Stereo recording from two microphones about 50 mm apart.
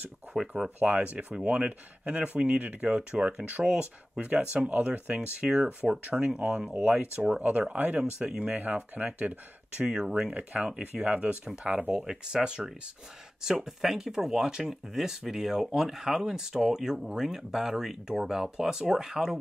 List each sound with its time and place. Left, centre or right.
0.3 s speech: centre
0.7 s speech: right
8.0 s speech: centre
8.5 s speech: right
9.8 s speech: centre